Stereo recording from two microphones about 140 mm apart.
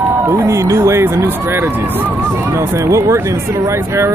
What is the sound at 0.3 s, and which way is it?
A man's voice, 20° right (ahead or behind).